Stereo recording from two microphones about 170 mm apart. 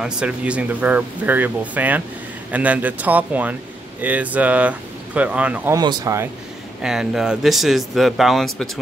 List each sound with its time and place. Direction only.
0.0 s speech: 5° right (ahead or behind)
5.8 s speech: 25° right (ahead or behind)
6.8 s speech: 5° right (ahead or behind)